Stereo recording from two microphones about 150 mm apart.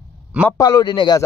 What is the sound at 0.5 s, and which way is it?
Speech, 25° left (ahead or behind).